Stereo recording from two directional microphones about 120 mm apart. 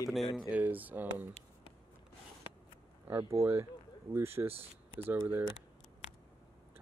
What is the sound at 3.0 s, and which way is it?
Speech, 25° right (ahead or behind).